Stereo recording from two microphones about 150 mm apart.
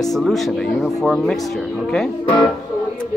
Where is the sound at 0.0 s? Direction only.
Centre (ahead or behind).